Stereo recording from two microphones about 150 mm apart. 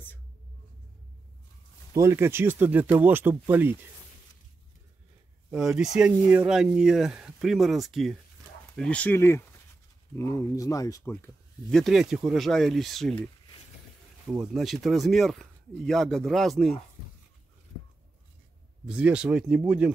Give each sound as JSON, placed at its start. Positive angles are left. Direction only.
{"t": 2.0, "sound": "speech", "side_deg": -20}
{"t": 5.5, "sound": "speech", "side_deg": -5}
{"t": 11.7, "sound": "speech", "side_deg": 0}
{"t": 14.4, "sound": "speech", "side_deg": 0}
{"t": 18.9, "sound": "speech", "side_deg": -5}